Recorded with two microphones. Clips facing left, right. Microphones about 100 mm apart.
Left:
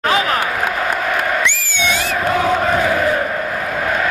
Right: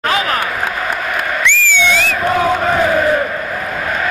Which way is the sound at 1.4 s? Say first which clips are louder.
Right 4 dB; 20° left (ahead or behind).